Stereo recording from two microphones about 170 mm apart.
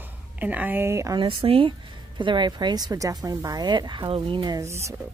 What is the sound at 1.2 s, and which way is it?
A woman's voice, 30° right (ahead or behind).